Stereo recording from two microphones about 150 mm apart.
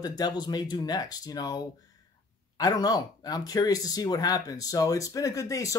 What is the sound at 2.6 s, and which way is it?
Speech, 25° left (ahead or behind).